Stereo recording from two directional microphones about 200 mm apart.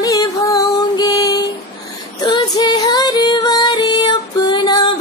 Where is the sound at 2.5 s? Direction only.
20° left (ahead or behind).